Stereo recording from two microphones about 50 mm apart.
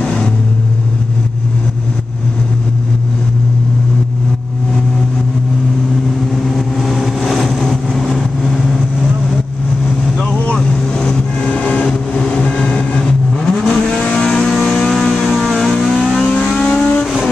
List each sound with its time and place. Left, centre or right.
0.0 s vehicle: centre
6.3 s vehicle: centre
7.6 s vehicle: centre
10.5 s vehicle: centre
14.7 s vehicle: centre